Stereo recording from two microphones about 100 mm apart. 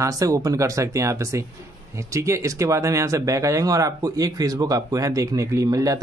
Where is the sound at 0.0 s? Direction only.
35° right (ahead or behind).